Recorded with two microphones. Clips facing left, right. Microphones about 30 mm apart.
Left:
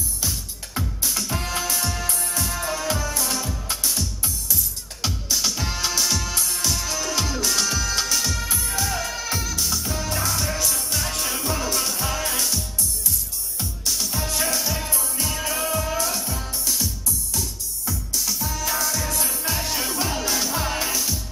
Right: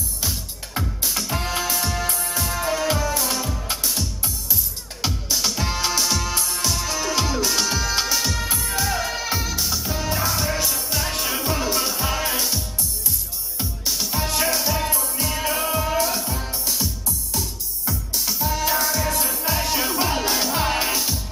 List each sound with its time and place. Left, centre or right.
0.2 s music: centre
9.6 s music: centre
17.8 s music: right
19.1 s music: centre; by 21.2 s right